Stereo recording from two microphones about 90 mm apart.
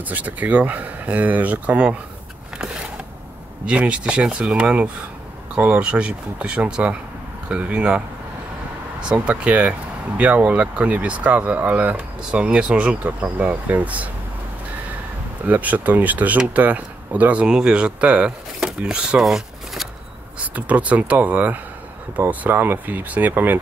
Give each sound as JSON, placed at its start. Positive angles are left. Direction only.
{"t": 0.0, "sound": "speech", "side_deg": -15}
{"t": 3.6, "sound": "speech", "side_deg": -15}
{"t": 9.1, "sound": "speech", "side_deg": -15}
{"t": 15.4, "sound": "speech", "side_deg": -20}
{"t": 20.3, "sound": "speech", "side_deg": -15}